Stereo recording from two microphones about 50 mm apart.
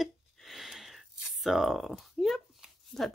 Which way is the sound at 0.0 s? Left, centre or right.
Centre.